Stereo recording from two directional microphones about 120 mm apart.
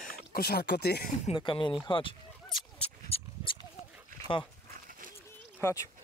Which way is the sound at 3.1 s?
55° left (ahead or behind).